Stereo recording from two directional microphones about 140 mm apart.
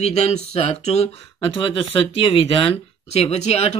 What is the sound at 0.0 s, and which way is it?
Speech, 50° left (ahead or behind).